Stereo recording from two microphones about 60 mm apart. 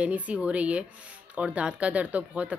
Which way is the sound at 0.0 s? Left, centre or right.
Right.